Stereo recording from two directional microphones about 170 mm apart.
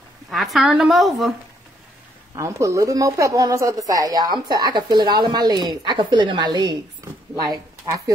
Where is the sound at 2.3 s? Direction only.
20° right (ahead or behind).